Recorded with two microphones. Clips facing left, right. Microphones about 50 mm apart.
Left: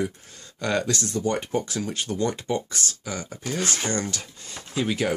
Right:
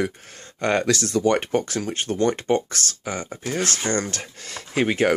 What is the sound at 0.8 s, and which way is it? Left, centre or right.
Speech, right.